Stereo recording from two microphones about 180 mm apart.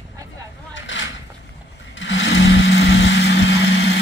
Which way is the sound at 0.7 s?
90° left.